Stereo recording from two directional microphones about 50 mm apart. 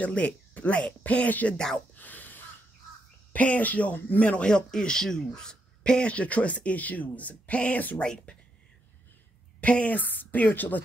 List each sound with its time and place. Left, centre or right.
0.0 s speech: left
2.0 s a sound: left
3.3 s speech: left
4.2 s speech: left
6.1 s speech: left
8.0 s speech: centre
9.6 s speech: left